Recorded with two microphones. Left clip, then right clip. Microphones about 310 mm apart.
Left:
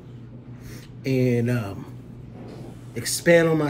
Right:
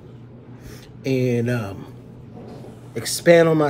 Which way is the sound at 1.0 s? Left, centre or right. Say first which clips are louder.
Right 2 dB; centre.